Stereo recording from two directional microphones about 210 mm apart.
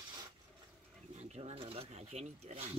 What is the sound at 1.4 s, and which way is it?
Speech, 30° right (ahead or behind).